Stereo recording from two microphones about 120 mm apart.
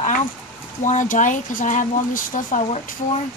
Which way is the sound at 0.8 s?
90° left.